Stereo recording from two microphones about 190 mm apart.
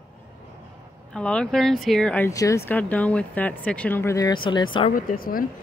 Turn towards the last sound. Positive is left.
turn(degrees=50)  # may be behind; listen again after turning